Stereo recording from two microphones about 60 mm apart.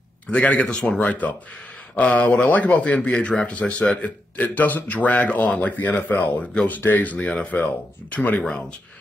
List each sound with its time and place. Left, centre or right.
0.3 s speech: centre
8.5 s speech: centre